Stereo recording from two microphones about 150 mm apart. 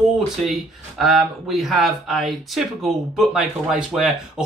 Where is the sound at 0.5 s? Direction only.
Centre (ahead or behind).